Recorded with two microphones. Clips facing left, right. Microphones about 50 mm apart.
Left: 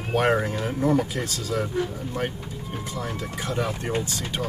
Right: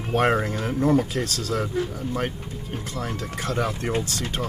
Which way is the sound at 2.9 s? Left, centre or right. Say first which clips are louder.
Right 1 dB; right.